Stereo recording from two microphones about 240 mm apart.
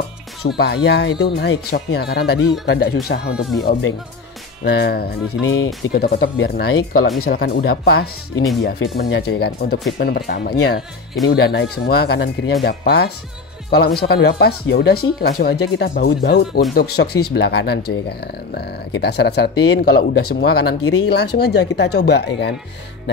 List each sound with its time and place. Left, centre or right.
0.5 s speech: left
4.6 s speech: left
5.3 s speech: left
5.9 s speech: left
20.8 s speech: left
21.4 s speech: left